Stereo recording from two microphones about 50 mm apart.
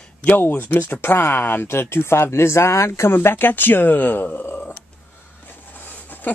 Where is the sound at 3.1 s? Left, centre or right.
Left.